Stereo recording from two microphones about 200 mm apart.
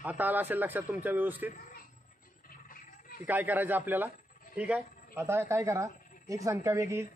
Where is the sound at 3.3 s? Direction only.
10° right (ahead or behind).